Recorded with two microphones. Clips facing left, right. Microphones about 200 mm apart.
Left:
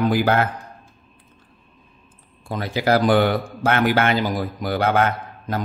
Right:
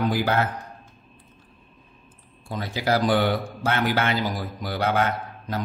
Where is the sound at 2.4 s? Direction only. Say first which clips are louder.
Left 5 dB; 60° left (ahead or behind).